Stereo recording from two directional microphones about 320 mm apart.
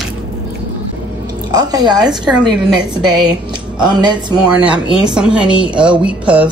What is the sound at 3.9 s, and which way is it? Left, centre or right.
Speech, centre.